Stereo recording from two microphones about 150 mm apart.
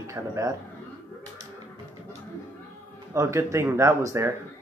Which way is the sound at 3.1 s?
20° right (ahead or behind).